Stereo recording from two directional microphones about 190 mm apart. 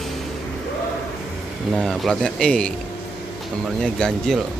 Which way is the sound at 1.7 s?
Centre (ahead or behind).